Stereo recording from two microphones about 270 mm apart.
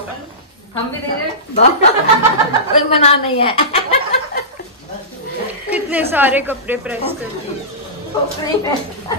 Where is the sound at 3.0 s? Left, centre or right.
Left.